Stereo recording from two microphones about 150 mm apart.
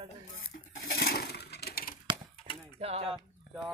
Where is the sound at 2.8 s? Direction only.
40° right (ahead or behind).